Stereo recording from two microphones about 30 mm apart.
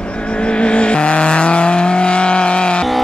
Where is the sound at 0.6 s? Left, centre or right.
Left.